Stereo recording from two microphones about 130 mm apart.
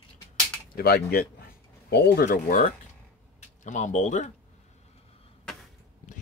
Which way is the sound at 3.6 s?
70° left (ahead or behind).